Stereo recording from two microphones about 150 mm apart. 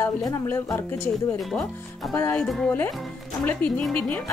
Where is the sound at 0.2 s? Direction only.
20° left (ahead or behind).